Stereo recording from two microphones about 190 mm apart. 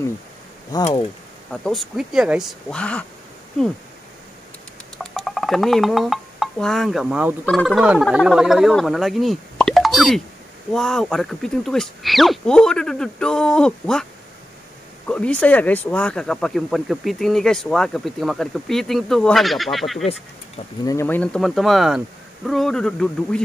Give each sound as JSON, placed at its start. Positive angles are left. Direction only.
{"t": 1.5, "sound": "speech", "side_deg": 0}
{"t": 4.9, "sound": "speech", "side_deg": 5}
{"t": 15.0, "sound": "speech", "side_deg": 5}
{"t": 20.8, "sound": "speech", "side_deg": 15}